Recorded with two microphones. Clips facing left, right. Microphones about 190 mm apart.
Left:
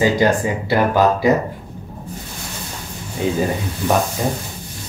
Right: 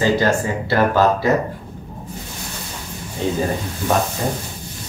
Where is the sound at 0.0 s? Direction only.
15° left (ahead or behind).